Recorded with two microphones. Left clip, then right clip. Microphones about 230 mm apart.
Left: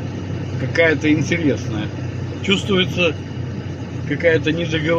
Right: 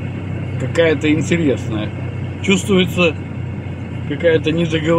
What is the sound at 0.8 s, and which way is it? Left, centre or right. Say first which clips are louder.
A man's voice: right 1 dB; centre.